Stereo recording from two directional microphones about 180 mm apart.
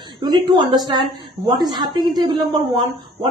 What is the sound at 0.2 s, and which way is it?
A woman's voice, 25° right (ahead or behind).